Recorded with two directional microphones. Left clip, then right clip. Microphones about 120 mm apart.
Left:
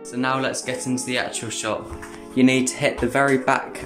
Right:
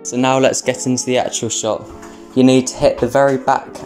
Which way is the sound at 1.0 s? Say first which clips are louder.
Right 10 dB; 65° right (ahead or behind).